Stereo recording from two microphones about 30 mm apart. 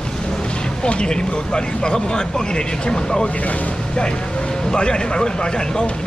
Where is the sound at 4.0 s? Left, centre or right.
Left.